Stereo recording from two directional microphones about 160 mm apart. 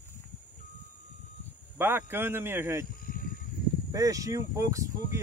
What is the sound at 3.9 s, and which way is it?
Speech, 20° right (ahead or behind).